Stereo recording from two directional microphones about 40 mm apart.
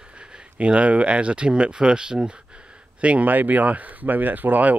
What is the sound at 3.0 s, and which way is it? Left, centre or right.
Speech, right.